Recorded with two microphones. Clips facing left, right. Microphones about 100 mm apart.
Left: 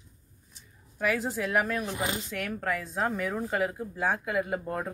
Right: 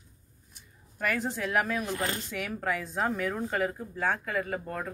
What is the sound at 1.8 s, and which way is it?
Speech, 15° left (ahead or behind).